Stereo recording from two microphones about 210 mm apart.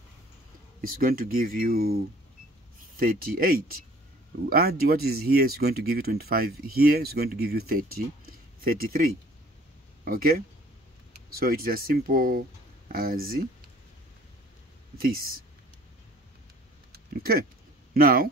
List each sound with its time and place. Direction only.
0.7 s speech: 45° right (ahead or behind)
15.0 s speech: 45° right (ahead or behind)
16.9 s a sound: 45° right (ahead or behind)
17.9 s speech: 45° right (ahead or behind)